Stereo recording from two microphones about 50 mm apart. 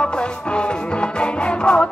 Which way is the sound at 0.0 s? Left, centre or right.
Left.